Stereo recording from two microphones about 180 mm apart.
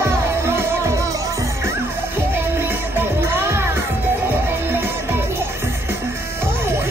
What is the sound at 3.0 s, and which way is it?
Music, 15° right (ahead or behind).